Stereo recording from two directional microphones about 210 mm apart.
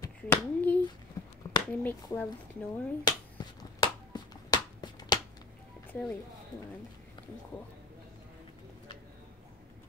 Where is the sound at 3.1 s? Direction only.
20° left (ahead or behind).